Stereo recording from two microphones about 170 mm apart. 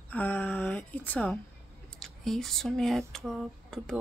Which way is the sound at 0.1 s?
5° left (ahead or behind).